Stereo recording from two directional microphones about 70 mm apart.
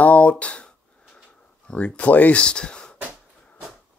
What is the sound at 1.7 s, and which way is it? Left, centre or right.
Speech, centre.